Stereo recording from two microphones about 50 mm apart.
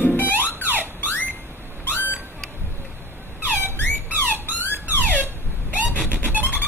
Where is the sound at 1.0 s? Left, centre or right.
Left.